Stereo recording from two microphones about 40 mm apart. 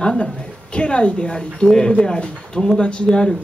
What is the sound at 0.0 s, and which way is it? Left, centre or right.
Speech, left.